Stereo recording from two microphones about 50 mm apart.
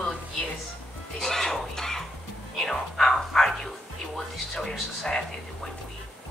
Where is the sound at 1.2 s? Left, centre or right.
Centre.